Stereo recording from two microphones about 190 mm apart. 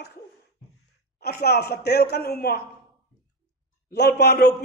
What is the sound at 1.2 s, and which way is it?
A man's voice, 55° left (ahead or behind).